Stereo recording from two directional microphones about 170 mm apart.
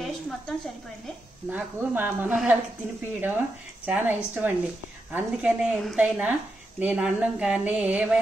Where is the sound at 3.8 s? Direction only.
10° right (ahead or behind).